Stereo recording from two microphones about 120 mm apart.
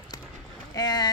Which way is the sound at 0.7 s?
35° left (ahead or behind).